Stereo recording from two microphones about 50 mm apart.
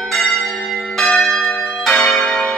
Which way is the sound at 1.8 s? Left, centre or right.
Centre.